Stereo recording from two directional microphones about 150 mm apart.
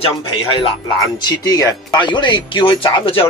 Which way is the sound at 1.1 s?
25° left (ahead or behind).